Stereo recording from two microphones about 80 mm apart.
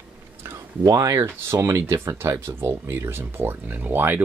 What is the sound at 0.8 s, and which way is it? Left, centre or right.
Speech, right.